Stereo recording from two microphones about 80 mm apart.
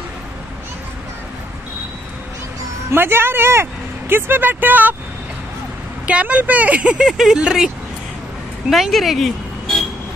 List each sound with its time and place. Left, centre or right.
2.9 s speech: right
6.0 s speech: centre